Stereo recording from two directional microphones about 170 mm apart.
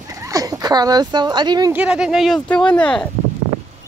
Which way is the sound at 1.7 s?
5° right (ahead or behind).